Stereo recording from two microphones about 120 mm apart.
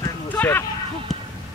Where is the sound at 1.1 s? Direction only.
Centre (ahead or behind).